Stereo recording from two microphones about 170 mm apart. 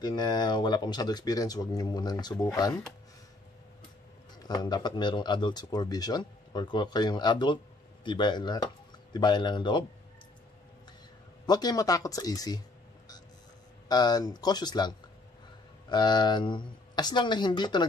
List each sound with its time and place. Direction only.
0.0 s speech: 25° left (ahead or behind)
4.5 s speech: 25° left (ahead or behind)
11.4 s speech: 25° left (ahead or behind)
13.8 s speech: 25° left (ahead or behind)